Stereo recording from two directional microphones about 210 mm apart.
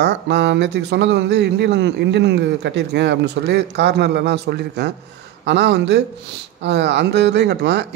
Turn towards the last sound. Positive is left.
turn(degrees=-55)  # may be behind; listen again after turning